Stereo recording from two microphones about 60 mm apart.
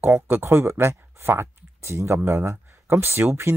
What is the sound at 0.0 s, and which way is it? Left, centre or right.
Speech, right.